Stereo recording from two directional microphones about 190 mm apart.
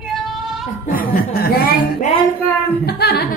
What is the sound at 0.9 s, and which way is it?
Speech, 50° left (ahead or behind).